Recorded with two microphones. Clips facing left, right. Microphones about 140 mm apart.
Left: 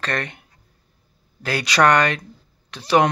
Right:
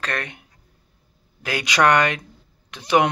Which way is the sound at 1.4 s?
15° right (ahead or behind).